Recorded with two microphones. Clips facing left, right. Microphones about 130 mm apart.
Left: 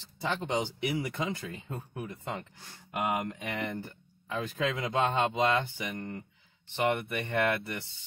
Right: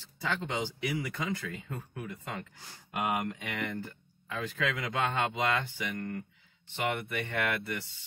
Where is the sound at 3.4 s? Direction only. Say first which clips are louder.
Left 1 dB; 25° left (ahead or behind).